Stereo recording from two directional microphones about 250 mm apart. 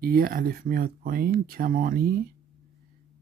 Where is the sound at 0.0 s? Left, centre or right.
Right.